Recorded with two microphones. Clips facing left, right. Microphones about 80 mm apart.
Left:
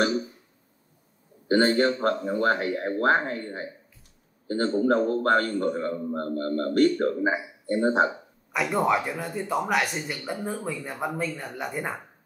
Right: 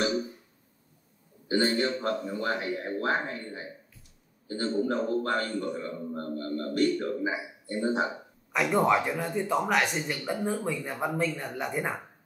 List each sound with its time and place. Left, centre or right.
1.5 s a man's voice: left
8.5 s speech: centre